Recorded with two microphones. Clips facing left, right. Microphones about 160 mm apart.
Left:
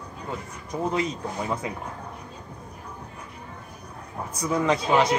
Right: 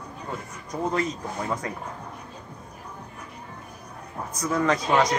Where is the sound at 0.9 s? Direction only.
10° left (ahead or behind).